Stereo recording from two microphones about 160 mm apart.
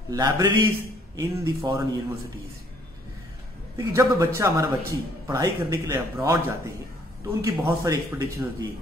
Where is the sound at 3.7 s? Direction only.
20° right (ahead or behind).